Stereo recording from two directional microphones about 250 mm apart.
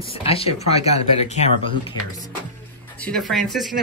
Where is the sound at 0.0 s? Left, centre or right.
Left.